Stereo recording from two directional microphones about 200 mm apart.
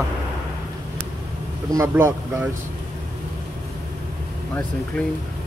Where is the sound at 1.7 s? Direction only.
15° right (ahead or behind).